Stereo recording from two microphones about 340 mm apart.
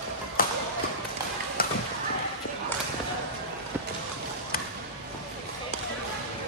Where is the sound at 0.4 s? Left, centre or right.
Left.